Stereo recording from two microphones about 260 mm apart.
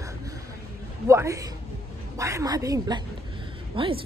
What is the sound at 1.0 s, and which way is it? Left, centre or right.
A woman's voice, centre.